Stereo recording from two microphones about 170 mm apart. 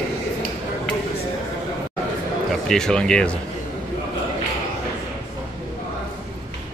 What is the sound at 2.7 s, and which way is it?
Speech, 5° left (ahead or behind).